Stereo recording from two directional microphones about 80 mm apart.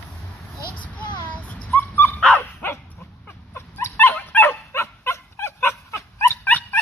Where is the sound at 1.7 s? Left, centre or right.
Left.